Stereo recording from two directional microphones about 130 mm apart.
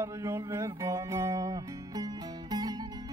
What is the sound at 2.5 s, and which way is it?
Music, 30° right (ahead or behind).